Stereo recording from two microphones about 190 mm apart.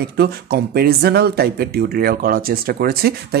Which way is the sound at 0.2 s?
55° right (ahead or behind).